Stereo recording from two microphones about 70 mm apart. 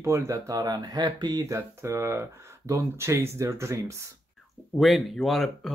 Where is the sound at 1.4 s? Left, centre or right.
Right.